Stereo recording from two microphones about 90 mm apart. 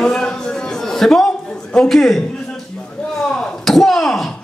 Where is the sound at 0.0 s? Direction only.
10° left (ahead or behind).